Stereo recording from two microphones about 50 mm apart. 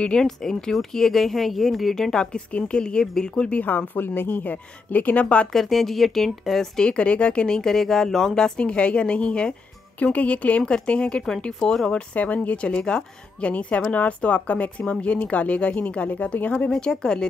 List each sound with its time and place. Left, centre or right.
0.0 s speech: centre
3.6 s a woman's voice: left
5.2 s speech: left
5.5 s speech: centre
6.8 s speech: left
11.9 s speech: left
16.7 s speech: centre